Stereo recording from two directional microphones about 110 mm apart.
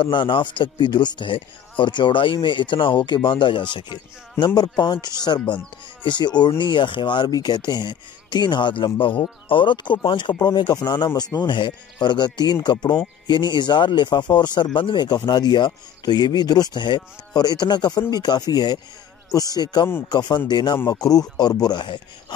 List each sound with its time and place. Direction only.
0.0 s a man's voice: 50° left (ahead or behind)